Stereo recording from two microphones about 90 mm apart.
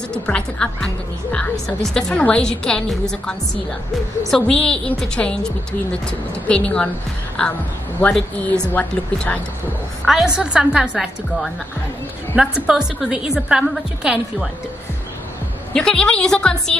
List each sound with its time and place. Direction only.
0.1 s a woman's voice: 10° left (ahead or behind)
8.7 s a woman's voice: 15° left (ahead or behind)
10.0 s a woman's voice: 5° right (ahead or behind)
15.7 s a woman's voice: 10° left (ahead or behind)